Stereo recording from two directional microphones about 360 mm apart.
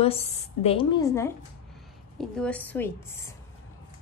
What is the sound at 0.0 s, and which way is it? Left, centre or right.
A woman's voice, centre.